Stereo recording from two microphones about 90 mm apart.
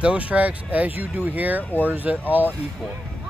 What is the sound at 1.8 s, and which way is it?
Speech, 20° right (ahead or behind).